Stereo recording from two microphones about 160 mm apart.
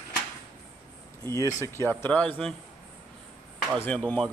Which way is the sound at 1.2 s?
20° left (ahead or behind).